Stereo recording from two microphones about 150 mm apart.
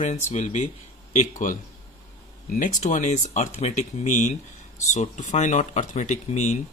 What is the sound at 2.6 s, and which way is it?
Speech, 55° left (ahead or behind).